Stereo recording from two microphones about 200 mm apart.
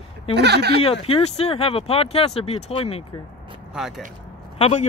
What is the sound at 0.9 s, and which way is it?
Speech, 30° left (ahead or behind).